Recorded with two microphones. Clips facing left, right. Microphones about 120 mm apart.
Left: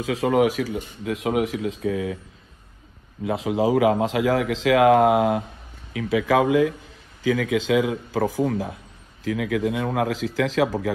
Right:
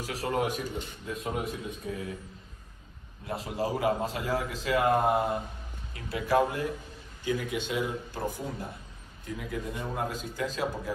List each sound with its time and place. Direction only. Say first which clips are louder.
0.3 s speech: left 9 dB; 90° left
3.4 s speech: left 9 dB; 90° left